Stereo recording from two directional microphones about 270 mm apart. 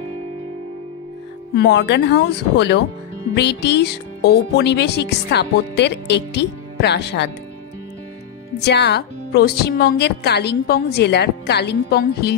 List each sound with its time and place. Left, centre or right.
1.5 s speech: left
8.6 s speech: left